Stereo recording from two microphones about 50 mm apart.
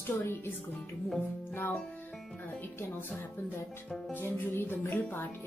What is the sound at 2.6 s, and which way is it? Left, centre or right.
Speech, left.